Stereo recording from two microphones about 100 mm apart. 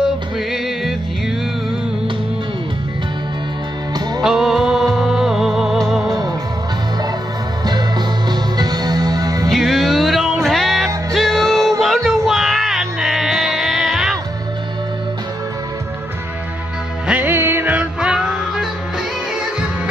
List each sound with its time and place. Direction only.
0.0 s music: 5° right (ahead or behind)
4.2 s music: 5° right (ahead or behind)
6.0 s music: 40° right (ahead or behind)
8.3 s music: 45° right (ahead or behind)
9.5 s music: centre (ahead or behind)
17.1 s music: 20° right (ahead or behind)